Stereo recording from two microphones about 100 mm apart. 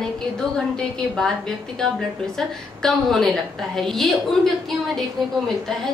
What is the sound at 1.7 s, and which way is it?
A woman's voice, 5° left (ahead or behind).